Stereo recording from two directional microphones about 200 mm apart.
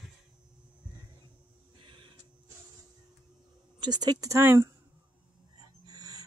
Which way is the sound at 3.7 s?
20° right (ahead or behind).